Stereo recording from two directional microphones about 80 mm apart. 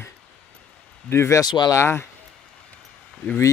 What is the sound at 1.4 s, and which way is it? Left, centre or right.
Speech, left.